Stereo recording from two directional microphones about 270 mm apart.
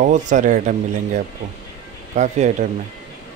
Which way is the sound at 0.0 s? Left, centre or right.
Right.